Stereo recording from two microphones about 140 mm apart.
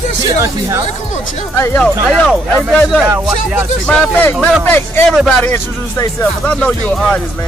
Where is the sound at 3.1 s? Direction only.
15° right (ahead or behind).